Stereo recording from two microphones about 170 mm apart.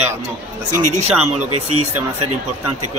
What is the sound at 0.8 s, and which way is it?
Speech, 45° right (ahead or behind).